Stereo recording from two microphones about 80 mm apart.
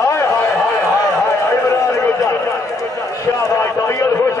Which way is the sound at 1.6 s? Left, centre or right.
Left.